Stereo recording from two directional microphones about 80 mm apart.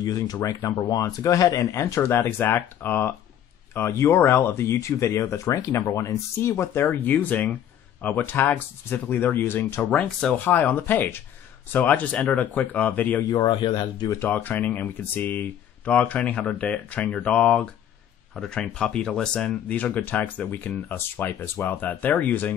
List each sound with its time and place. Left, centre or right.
0.0 s speech: left
1.8 s speech: left
13.4 s speech: left
14.0 s speech: left
14.3 s speech: left